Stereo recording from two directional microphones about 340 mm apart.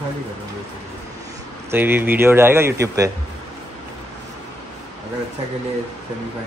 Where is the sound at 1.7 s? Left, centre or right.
Centre.